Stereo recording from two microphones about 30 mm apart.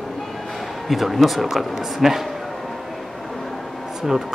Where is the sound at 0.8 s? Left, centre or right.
Centre.